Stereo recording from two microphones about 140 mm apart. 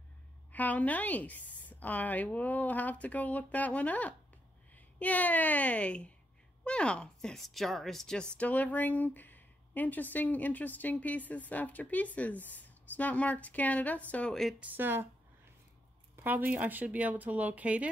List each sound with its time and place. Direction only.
0.5 s a woman's voice: 10° left (ahead or behind)
14.6 s a woman's voice: 15° right (ahead or behind)
16.2 s a woman's voice: 15° right (ahead or behind)